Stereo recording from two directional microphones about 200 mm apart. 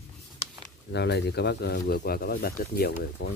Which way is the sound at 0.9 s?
55° left (ahead or behind).